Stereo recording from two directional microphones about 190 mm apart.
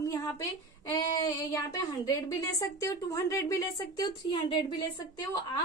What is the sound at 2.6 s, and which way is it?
A woman's voice, 15° left (ahead or behind).